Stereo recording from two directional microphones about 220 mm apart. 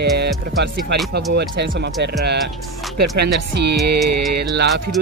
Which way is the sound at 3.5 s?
50° right (ahead or behind).